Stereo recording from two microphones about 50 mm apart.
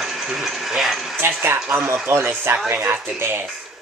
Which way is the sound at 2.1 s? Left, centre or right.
Right.